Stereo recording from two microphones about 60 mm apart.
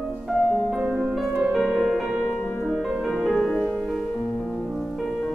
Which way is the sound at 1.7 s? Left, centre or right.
Centre.